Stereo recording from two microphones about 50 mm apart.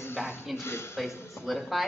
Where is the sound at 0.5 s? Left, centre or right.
Left.